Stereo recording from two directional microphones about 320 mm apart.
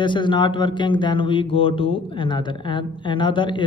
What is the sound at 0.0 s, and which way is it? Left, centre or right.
Speech, centre.